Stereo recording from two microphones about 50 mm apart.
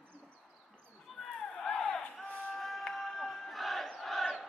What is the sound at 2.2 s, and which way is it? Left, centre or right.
Run, left.